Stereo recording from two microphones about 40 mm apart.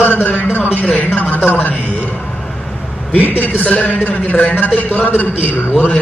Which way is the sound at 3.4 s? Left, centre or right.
Left.